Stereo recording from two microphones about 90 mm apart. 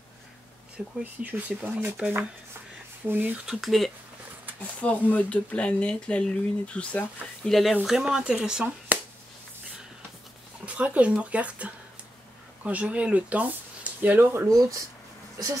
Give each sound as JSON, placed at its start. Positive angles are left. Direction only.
{"t": 0.8, "sound": "speech", "side_deg": -10}
{"t": 1.2, "sound": "speech", "side_deg": -20}
{"t": 1.9, "sound": "speech", "side_deg": -10}
{"t": 3.1, "sound": "speech", "side_deg": -20}
{"t": 3.4, "sound": "speech", "side_deg": 0}
{"t": 4.8, "sound": "speech", "side_deg": 15}
{"t": 7.4, "sound": "speech", "side_deg": 5}
{"t": 8.9, "sound": "a sound", "side_deg": -15}
{"t": 10.6, "sound": "speech", "side_deg": -15}